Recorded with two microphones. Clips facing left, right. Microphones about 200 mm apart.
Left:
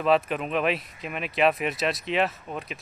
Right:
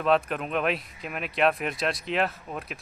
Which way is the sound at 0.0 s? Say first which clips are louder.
Left 1 dB; centre (ahead or behind).